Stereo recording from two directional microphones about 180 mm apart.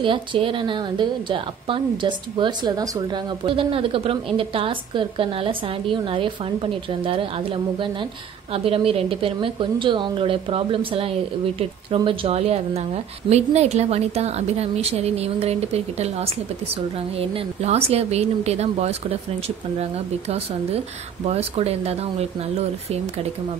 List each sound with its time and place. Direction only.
0.0 s a woman's voice: 30° right (ahead or behind)